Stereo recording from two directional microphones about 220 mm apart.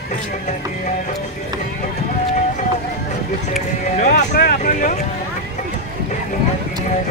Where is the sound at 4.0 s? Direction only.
40° left (ahead or behind).